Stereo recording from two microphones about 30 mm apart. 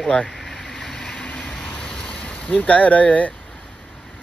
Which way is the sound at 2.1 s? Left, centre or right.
Left.